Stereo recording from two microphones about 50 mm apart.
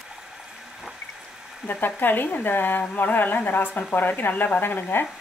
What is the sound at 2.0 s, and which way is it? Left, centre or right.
Speech, left.